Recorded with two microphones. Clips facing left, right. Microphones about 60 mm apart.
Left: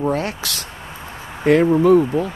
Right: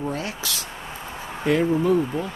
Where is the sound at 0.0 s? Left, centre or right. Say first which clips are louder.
Left 7 dB; left.